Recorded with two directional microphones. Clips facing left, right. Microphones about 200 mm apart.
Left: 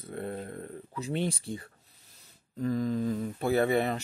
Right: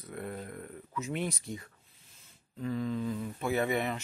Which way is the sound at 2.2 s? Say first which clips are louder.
Left 6 dB; 40° left (ahead or behind).